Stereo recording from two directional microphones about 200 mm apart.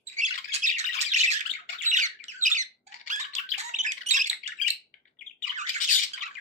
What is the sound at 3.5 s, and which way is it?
Bird, 35° right (ahead or behind).